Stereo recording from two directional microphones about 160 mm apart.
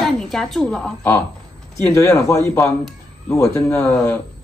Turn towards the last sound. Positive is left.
turn(degrees=15)  # may be behind; listen again after turning